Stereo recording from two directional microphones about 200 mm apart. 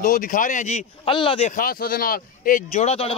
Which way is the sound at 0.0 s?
45° left (ahead or behind).